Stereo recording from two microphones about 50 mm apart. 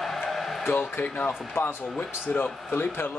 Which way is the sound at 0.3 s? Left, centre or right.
Centre.